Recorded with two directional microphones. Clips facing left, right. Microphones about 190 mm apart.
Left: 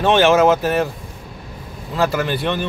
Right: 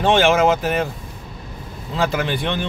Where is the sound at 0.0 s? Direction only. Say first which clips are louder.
Left 2 dB; 15° right (ahead or behind).